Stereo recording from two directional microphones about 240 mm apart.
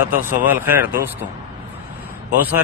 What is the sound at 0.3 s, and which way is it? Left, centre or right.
Speech, centre.